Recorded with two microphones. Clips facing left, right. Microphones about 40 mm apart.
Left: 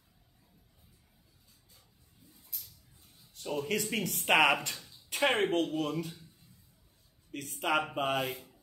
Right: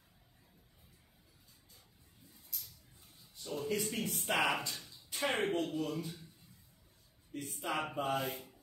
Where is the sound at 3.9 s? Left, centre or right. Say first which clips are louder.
Left 7 dB; left.